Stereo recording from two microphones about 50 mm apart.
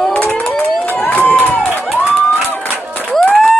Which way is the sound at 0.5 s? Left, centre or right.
Left.